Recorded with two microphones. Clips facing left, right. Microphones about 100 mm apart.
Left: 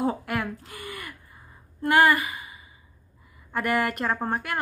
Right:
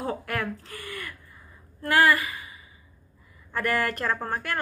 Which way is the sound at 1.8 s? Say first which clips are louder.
Left 2 dB; 20° left (ahead or behind).